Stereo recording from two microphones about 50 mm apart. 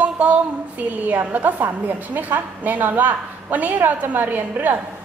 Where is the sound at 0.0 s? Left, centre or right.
Right.